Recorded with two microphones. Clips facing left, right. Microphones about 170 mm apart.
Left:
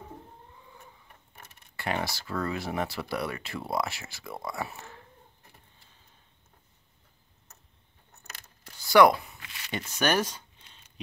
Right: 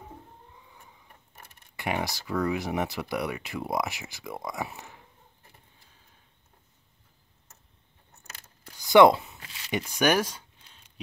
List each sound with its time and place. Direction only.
1.8 s speech: 15° right (ahead or behind)
8.6 s a sound: 15° right (ahead or behind)
9.7 s speech: 15° right (ahead or behind)